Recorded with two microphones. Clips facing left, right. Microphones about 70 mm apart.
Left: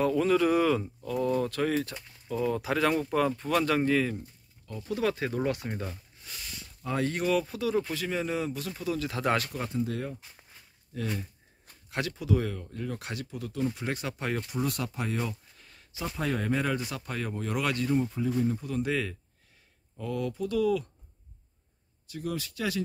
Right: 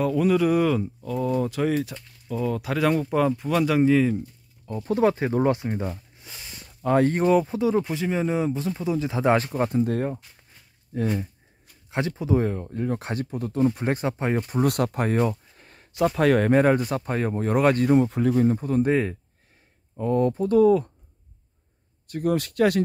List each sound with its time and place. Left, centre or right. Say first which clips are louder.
0.0 s speech: right 3 dB; centre
4.6 s speech: right 8 dB; right
5.6 s a sound: right 7 dB; right
6.8 s speech: right 9 dB; right
9.6 s speech: right 9 dB; right
10.9 s speech: right 8 dB; right
14.6 s speech: right 12 dB; right
16.0 s speech: right 12 dB; right
17.9 s speech: right 8 dB; right
22.0 s speech: right 10 dB; right